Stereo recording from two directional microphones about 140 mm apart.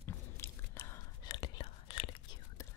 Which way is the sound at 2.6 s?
25° left (ahead or behind).